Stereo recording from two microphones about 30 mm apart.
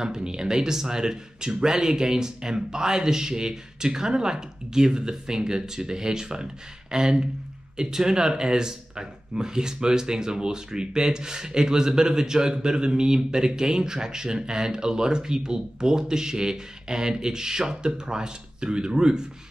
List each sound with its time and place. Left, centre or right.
0.0 s speech: right